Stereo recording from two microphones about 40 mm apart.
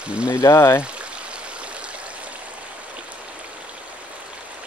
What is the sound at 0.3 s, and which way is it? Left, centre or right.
Speech, left.